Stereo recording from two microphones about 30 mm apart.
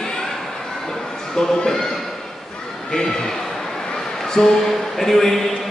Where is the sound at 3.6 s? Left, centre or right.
Centre.